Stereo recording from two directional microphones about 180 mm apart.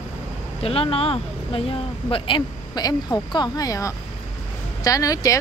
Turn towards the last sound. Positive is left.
turn(degrees=20)  # may be behind; listen again after turning